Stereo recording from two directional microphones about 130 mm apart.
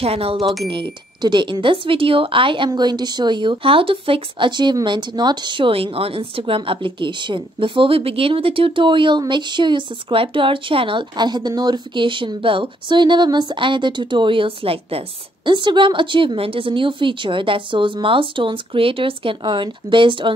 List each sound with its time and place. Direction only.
0.0 s a woman's voice: 50° right (ahead or behind)